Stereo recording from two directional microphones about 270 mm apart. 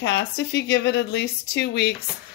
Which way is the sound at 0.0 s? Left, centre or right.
Left.